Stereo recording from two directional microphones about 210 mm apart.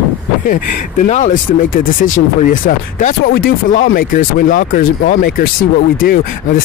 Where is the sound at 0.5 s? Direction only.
35° left (ahead or behind).